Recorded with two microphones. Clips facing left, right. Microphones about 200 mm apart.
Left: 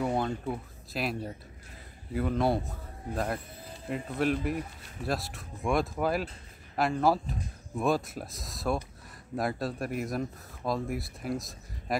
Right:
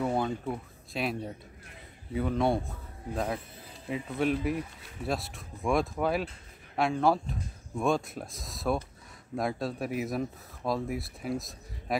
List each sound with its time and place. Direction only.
0.0 s speech: centre (ahead or behind)